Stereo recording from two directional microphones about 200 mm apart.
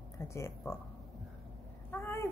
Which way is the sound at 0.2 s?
15° left (ahead or behind).